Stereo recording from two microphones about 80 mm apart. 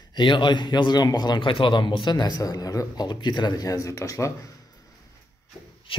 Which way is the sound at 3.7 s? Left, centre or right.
Left.